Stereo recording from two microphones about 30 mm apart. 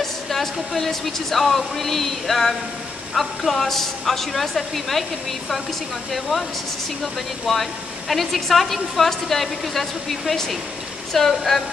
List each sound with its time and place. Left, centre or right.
0.0 s speech: centre
7.0 s a woman's voice: centre